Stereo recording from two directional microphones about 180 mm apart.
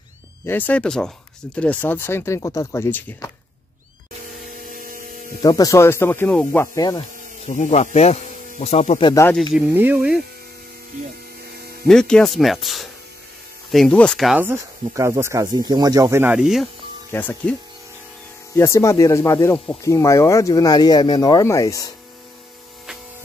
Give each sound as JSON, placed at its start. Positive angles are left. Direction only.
{"t": 0.5, "sound": "speech", "side_deg": 10}
{"t": 4.6, "sound": "a sound", "side_deg": -50}
{"t": 5.4, "sound": "speech", "side_deg": 20}
{"t": 7.4, "sound": "speech", "side_deg": 40}
{"t": 9.3, "sound": "speech", "side_deg": 0}
{"t": 11.9, "sound": "speech", "side_deg": 5}
{"t": 14.4, "sound": "speech", "side_deg": -15}
{"t": 17.1, "sound": "speech", "side_deg": 10}
{"t": 18.6, "sound": "speech", "side_deg": 15}